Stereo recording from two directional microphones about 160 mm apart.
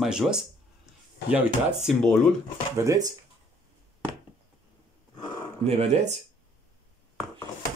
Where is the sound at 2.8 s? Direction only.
20° right (ahead or behind).